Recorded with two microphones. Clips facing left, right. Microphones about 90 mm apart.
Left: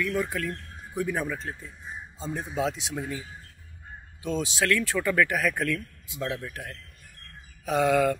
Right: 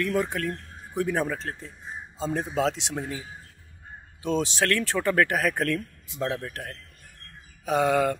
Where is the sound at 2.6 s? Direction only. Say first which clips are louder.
Right 2 dB; 75° right (ahead or behind).